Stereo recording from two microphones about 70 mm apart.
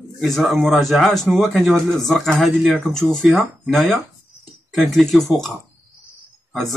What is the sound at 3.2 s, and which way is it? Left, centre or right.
Speech, centre.